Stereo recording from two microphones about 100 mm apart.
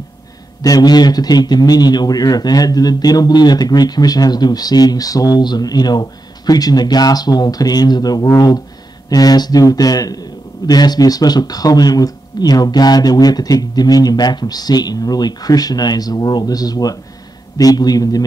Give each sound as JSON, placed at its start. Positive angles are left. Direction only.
{"t": 0.6, "sound": "a man's voice", "side_deg": 40}